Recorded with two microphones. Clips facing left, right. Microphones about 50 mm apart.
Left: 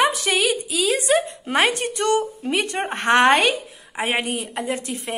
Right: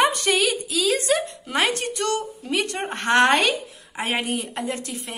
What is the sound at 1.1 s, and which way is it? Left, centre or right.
A woman's voice, left.